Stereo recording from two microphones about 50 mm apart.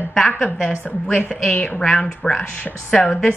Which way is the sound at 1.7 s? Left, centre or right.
Centre.